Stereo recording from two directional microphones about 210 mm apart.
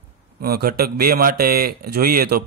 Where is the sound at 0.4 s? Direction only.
45° right (ahead or behind).